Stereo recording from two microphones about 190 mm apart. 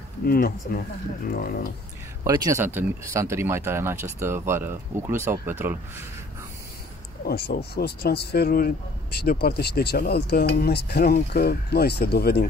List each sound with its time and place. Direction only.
0.2 s speech: 50° left (ahead or behind)
2.2 s speech: 20° right (ahead or behind)
7.2 s speech: 55° left (ahead or behind)